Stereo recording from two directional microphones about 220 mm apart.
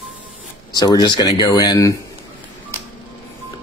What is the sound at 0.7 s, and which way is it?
Speech, 20° left (ahead or behind).